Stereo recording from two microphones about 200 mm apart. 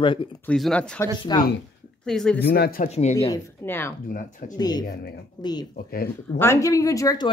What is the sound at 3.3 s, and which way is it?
Speech, 10° left (ahead or behind).